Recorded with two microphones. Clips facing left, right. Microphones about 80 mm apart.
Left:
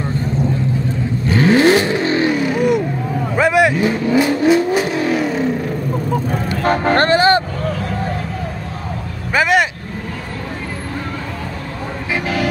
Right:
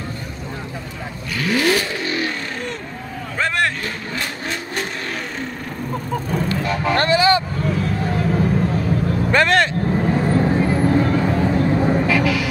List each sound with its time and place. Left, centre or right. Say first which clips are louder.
1.4 s vehicle: left 7 dB; left
3.3 s vehicle: left 7 dB; centre
6.6 s vehicle: left 8 dB; left
9.3 s vehicle: left 2 dB; centre